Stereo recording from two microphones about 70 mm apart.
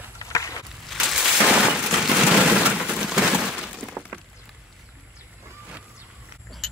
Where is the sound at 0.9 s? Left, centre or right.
Centre.